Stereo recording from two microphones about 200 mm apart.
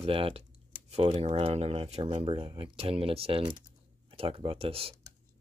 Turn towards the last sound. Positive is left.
turn(degrees=-30)  # may be behind; listen again after turning